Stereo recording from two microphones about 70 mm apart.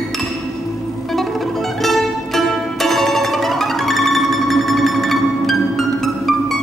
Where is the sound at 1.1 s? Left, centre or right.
Centre.